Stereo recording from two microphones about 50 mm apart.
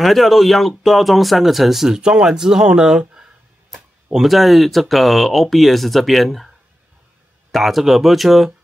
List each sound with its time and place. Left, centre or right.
0.0 s speech: centre
2.0 s speech: centre
4.1 s speech: centre
7.5 s speech: centre